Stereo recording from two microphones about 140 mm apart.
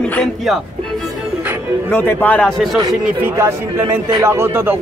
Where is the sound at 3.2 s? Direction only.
15° right (ahead or behind).